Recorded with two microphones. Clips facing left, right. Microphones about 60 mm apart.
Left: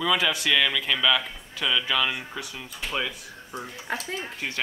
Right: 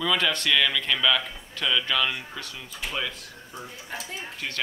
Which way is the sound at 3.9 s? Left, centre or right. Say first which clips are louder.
Left 6 dB; left.